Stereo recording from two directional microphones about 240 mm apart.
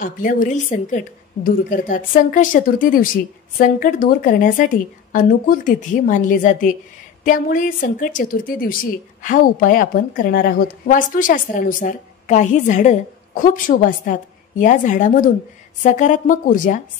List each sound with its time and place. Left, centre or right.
0.0 s a woman's voice: left